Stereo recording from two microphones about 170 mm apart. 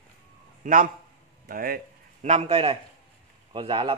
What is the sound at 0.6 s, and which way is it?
A man's voice, 55° right (ahead or behind).